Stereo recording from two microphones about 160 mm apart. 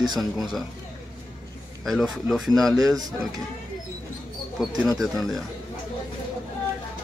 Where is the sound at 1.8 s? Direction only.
Centre (ahead or behind).